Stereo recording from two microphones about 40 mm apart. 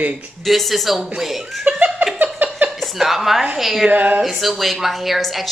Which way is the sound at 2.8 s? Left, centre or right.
Centre.